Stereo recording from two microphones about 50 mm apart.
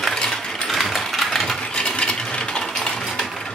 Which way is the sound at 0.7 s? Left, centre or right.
Centre.